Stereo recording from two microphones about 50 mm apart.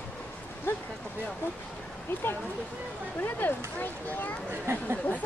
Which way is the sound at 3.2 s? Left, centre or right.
Left.